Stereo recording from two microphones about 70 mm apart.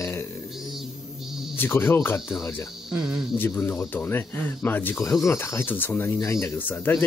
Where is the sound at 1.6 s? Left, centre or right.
Left.